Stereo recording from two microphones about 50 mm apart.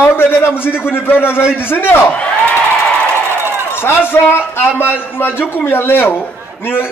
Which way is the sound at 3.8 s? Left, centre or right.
Left.